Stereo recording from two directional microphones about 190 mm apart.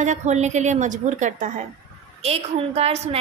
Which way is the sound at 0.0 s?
40° right (ahead or behind).